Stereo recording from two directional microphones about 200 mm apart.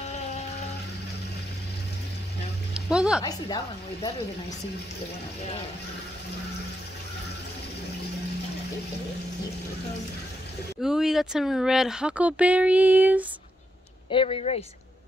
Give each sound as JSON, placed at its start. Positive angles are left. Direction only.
{"t": 0.0, "sound": "music", "side_deg": 35}
{"t": 2.7, "sound": "music", "side_deg": -5}
{"t": 3.2, "sound": "a woman's voice", "side_deg": 20}
{"t": 10.8, "sound": "speech", "side_deg": 0}
{"t": 14.1, "sound": "speech", "side_deg": 30}